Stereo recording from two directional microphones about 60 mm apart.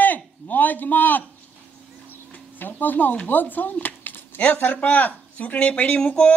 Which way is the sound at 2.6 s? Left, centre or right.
Left.